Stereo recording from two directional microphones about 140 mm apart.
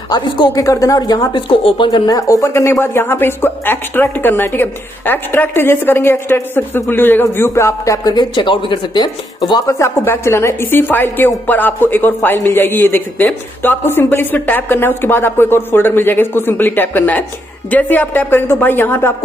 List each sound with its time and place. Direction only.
0.1 s a woman's voice: 25° left (ahead or behind)